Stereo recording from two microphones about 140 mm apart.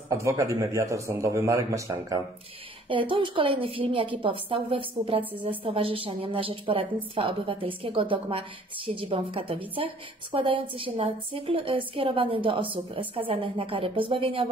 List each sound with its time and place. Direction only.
0.1 s a man's voice: 20° right (ahead or behind)
2.9 s a woman's voice: 40° right (ahead or behind)